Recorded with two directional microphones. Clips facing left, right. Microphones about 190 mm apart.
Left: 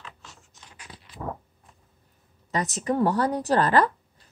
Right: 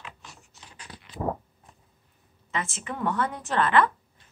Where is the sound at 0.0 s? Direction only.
15° right (ahead or behind).